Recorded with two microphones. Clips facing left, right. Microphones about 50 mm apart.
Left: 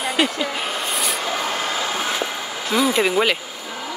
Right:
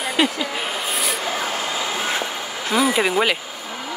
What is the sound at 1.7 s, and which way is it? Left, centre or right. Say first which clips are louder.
Vehicle: even; right.